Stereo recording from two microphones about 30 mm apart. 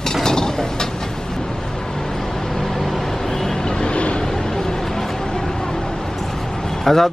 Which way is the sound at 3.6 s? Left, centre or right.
Left.